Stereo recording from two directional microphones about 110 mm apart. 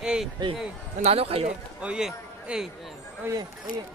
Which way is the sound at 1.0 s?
65° right (ahead or behind).